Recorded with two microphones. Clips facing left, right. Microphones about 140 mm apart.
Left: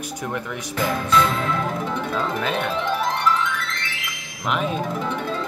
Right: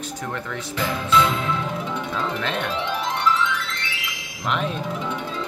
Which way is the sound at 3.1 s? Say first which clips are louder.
Even; 50° left (ahead or behind).